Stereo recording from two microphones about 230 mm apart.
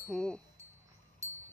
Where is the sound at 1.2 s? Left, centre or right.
Centre.